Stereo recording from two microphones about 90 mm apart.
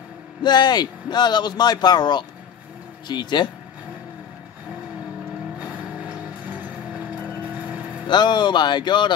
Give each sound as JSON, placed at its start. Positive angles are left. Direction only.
{"t": 0.4, "sound": "a man's voice", "side_deg": 50}
{"t": 5.6, "sound": "vehicle", "side_deg": -15}
{"t": 8.1, "sound": "speech", "side_deg": 55}